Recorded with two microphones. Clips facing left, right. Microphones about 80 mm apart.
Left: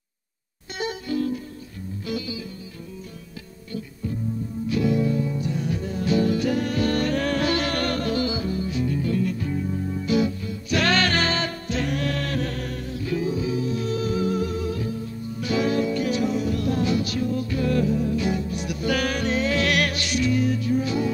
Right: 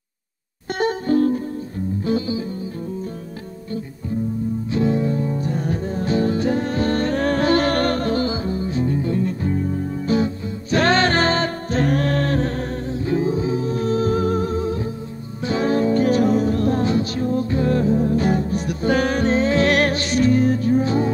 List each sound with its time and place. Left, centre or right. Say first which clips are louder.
0.7 s music: right 8 dB; right
4.6 s music: right 1 dB; right
9.5 s music: right 4 dB; right